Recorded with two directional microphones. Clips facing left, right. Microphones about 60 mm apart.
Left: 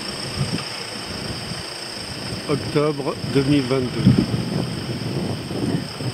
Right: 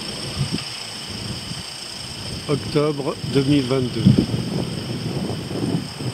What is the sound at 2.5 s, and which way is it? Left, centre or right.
Speech, left.